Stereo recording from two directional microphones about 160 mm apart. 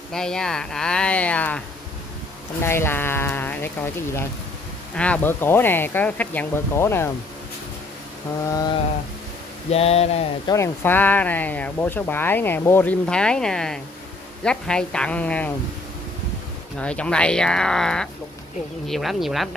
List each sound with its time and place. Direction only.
0.1 s speech: 5° left (ahead or behind)
2.6 s speech: 15° left (ahead or behind)
8.5 s mantra: 25° left (ahead or behind)
9.7 s a sound: 40° left (ahead or behind)
10.5 s speech: 15° left (ahead or behind)
16.8 s speech: 5° left (ahead or behind)